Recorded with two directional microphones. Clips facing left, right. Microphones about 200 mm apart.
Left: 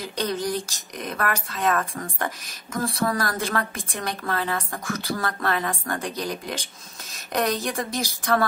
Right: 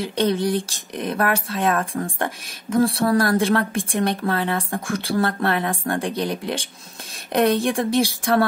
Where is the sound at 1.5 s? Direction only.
30° right (ahead or behind).